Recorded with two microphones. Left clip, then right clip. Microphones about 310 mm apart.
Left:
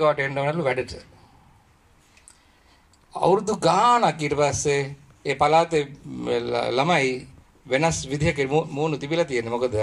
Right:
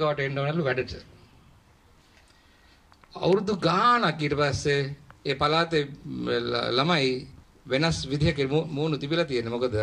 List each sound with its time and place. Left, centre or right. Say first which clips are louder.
0.0 s speech: left 5 dB; centre
3.1 s speech: left 4 dB; left